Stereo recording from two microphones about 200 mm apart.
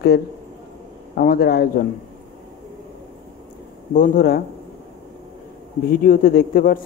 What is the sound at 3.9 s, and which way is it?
Speech, 45° left (ahead or behind).